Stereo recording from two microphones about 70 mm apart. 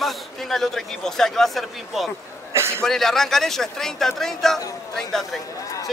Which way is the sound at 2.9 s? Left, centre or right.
Centre.